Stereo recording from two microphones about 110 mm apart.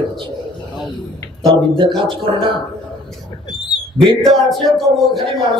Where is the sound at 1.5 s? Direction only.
50° right (ahead or behind).